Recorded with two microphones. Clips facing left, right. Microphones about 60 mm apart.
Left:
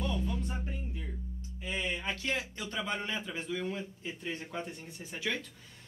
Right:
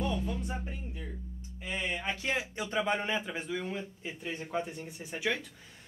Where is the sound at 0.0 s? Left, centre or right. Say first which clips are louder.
Right 2 dB; centre.